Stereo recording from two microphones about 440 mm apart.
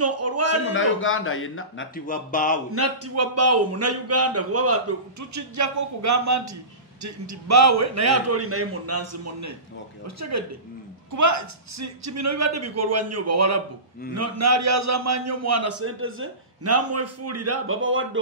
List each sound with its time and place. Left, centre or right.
0.0 s a sound: right
0.7 s speech: left
2.7 s a man's voice: right